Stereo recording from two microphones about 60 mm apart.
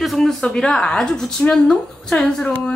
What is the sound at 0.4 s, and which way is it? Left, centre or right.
Speech, centre.